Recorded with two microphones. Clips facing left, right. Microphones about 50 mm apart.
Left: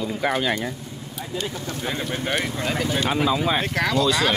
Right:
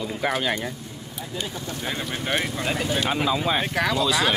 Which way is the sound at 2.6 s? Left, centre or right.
Right.